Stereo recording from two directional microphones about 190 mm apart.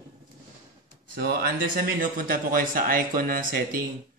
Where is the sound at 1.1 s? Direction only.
50° right (ahead or behind).